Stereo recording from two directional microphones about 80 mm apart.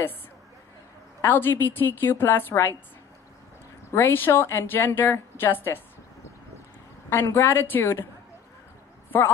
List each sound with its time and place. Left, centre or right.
1.2 s a woman's voice: left
3.9 s a woman's voice: left
7.1 s a woman's voice: left